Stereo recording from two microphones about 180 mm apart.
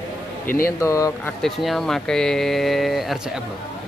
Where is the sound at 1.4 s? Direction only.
Centre (ahead or behind).